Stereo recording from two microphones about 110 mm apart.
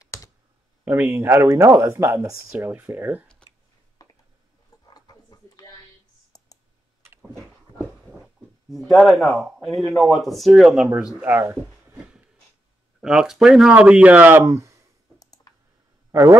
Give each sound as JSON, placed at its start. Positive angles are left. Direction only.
{"t": 0.0, "sound": "computer keyboard", "side_deg": 30}
{"t": 0.8, "sound": "speech", "side_deg": -20}
{"t": 4.0, "sound": "a sound", "side_deg": 35}
{"t": 6.3, "sound": "clicking", "side_deg": 35}
{"t": 7.8, "sound": "a sound", "side_deg": 0}
{"t": 8.9, "sound": "speech", "side_deg": 0}
{"t": 11.1, "sound": "speech", "side_deg": -15}
{"t": 13.0, "sound": "speech", "side_deg": -5}
{"t": 15.1, "sound": "clicking", "side_deg": 35}
{"t": 16.1, "sound": "speech", "side_deg": -30}